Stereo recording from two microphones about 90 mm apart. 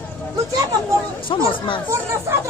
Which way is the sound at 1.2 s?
70° left (ahead or behind).